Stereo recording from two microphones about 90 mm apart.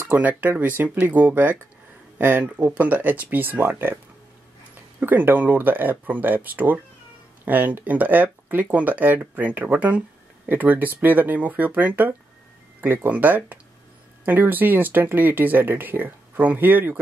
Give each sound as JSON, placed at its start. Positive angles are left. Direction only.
{"t": 0.0, "sound": "speech", "side_deg": -20}
{"t": 5.0, "sound": "speech", "side_deg": -20}